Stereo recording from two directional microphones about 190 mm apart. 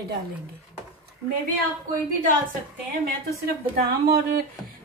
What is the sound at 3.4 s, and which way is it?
Speech, 55° right (ahead or behind).